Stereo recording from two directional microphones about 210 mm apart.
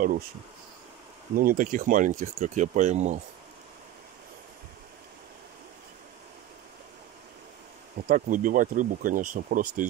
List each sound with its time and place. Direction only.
1.3 s speech: 40° right (ahead or behind)
8.1 s speech: 40° right (ahead or behind)